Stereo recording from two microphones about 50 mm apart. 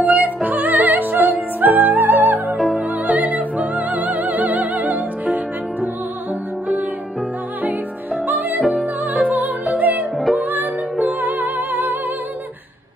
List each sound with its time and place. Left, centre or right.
0.1 s music: right
2.5 s music: centre
3.1 s music: right
8.3 s music: right